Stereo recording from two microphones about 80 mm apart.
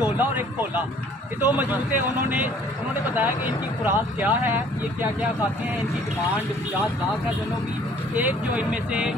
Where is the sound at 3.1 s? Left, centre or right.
Right.